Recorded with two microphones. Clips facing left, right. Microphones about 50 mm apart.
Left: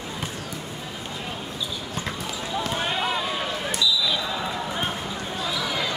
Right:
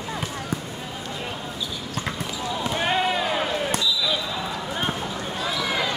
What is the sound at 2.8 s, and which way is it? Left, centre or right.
Basketball bounce, right.